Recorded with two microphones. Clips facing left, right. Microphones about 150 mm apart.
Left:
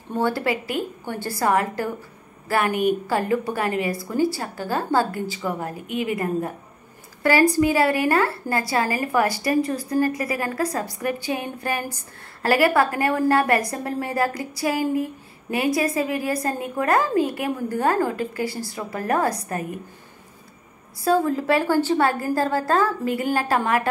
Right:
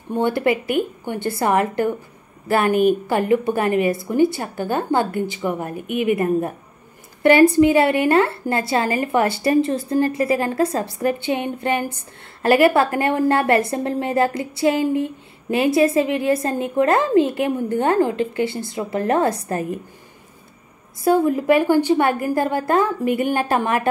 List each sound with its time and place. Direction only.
0.2 s a woman's voice: 20° right (ahead or behind)
21.0 s a woman's voice: 20° right (ahead or behind)